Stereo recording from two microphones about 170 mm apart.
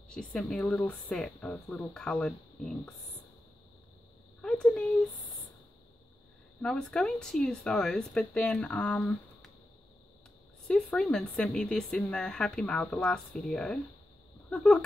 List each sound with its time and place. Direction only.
0.1 s speech: 5° left (ahead or behind)
4.4 s speech: 5° left (ahead or behind)
6.6 s speech: 5° left (ahead or behind)
10.7 s speech: 5° left (ahead or behind)